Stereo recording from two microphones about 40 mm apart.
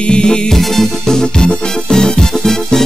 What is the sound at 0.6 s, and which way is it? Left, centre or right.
Music, centre.